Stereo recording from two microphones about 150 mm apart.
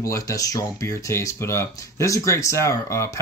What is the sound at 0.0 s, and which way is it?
Speech, 20° left (ahead or behind).